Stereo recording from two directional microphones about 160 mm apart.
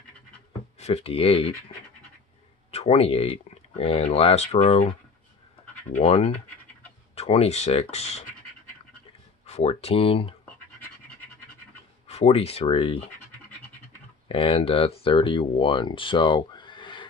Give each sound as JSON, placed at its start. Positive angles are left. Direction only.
{"t": 0.7, "sound": "speech", "side_deg": 40}
{"t": 2.7, "sound": "speech", "side_deg": 40}
{"t": 5.9, "sound": "speech", "side_deg": 40}
{"t": 9.5, "sound": "speech", "side_deg": 40}
{"t": 12.1, "sound": "speech", "side_deg": 40}
{"t": 14.3, "sound": "speech", "side_deg": 35}